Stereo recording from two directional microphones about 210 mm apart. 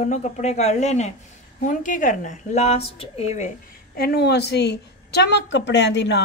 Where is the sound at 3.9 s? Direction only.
50° left (ahead or behind).